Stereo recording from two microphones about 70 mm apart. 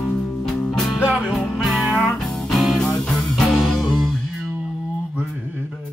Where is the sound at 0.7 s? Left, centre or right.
Centre.